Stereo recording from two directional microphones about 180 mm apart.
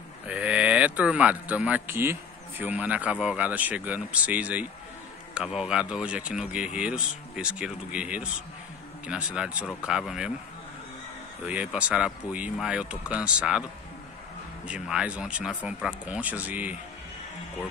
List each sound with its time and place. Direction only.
0.3 s speech: 5° right (ahead or behind)
11.4 s speech: 5° right (ahead or behind)
14.7 s speech: 5° right (ahead or behind)